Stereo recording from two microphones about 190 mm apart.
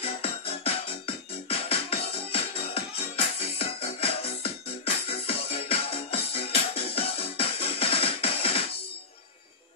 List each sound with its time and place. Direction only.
0.0 s music: 30° left (ahead or behind)